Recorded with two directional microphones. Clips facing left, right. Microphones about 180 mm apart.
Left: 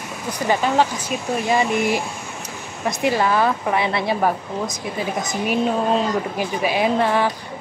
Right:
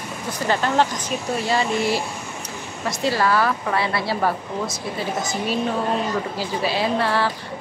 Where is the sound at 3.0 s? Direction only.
20° left (ahead or behind).